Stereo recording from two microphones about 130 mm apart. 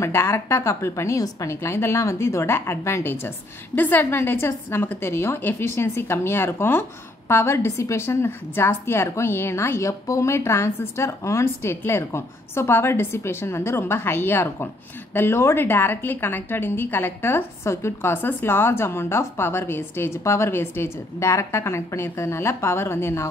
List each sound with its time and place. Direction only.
0.0 s a woman's voice: 20° left (ahead or behind)